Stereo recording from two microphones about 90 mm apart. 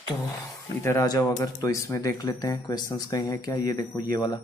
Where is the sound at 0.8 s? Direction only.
35° left (ahead or behind).